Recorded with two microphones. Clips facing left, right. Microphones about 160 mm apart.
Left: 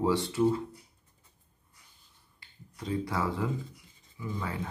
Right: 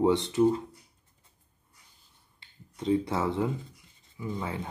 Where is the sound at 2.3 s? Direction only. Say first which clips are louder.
Right 4 dB; 25° right (ahead or behind).